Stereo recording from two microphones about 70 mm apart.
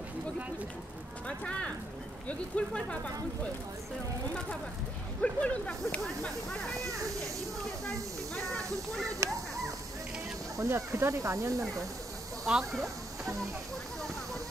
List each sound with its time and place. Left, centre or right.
1.2 s a sound: centre
2.2 s speech: centre
5.2 s speech: centre
6.9 s speech: right
9.2 s a sound: right
10.6 s speech: right
12.4 s speech: centre